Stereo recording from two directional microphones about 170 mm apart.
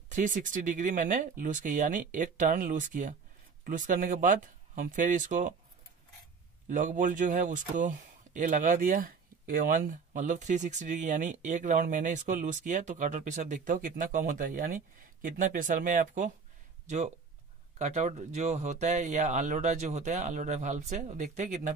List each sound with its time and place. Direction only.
0.1 s speech: 50° right (ahead or behind)
6.7 s speech: 50° right (ahead or behind)